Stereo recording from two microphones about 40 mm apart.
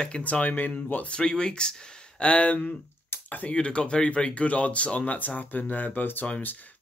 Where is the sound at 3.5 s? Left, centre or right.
Left.